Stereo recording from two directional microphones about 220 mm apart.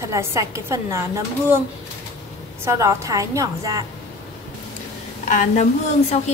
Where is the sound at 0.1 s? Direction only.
15° right (ahead or behind).